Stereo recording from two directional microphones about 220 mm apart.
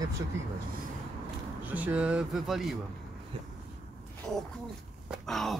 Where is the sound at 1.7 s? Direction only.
5° right (ahead or behind).